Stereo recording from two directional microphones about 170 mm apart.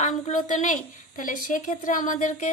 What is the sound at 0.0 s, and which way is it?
A woman's voice, 45° left (ahead or behind).